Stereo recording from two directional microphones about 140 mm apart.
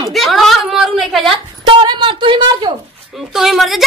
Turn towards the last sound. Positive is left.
turn(degrees=0)  # may be behind; listen again after turning